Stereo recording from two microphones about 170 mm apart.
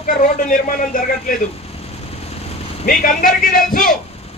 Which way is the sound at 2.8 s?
55° left (ahead or behind).